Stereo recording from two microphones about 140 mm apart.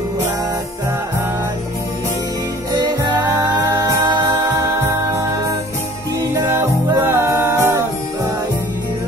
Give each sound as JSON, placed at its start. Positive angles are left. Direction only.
{"t": 2.7, "sound": "music", "side_deg": -30}
{"t": 6.3, "sound": "music", "side_deg": -20}